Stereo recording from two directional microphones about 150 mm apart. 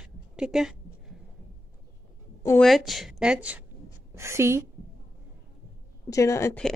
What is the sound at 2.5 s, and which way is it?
A woman's voice, centre (ahead or behind).